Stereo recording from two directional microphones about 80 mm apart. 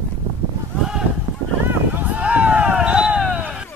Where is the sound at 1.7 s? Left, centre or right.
Right.